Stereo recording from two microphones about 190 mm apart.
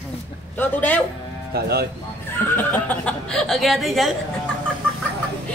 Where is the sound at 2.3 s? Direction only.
10° left (ahead or behind).